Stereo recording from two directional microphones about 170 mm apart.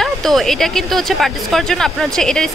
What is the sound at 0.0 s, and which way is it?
Speech, centre (ahead or behind).